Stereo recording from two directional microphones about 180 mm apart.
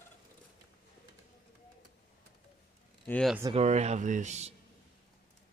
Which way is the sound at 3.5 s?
35° right (ahead or behind).